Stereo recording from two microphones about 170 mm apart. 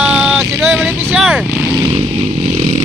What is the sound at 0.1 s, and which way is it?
Vehicle, centre (ahead or behind).